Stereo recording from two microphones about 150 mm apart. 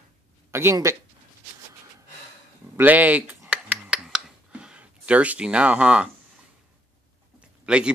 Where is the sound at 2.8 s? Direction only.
10° right (ahead or behind).